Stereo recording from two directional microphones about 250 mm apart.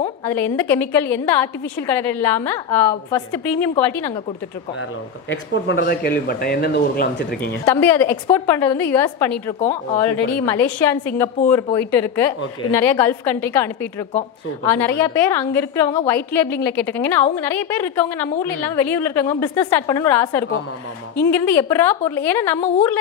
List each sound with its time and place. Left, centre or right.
0.3 s a woman's voice: centre
5.3 s speech: left
7.6 s a woman's voice: centre
14.8 s a woman's voice: centre